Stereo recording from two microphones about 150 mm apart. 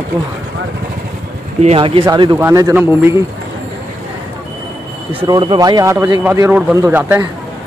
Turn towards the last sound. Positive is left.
turn(degrees=-15)  # may be behind; listen again after turning